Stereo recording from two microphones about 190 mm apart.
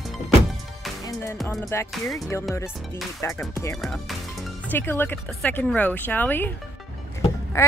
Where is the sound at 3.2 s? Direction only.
15° left (ahead or behind).